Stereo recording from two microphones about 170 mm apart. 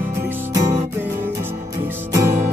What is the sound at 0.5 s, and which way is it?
Music, 20° right (ahead or behind).